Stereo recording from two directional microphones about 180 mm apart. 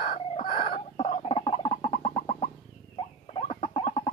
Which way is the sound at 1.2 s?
30° left (ahead or behind).